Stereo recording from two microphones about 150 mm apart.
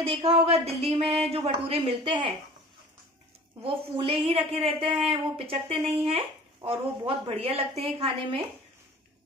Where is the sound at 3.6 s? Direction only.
35° right (ahead or behind).